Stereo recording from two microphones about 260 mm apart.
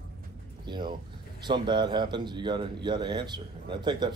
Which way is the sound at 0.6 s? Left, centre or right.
Centre.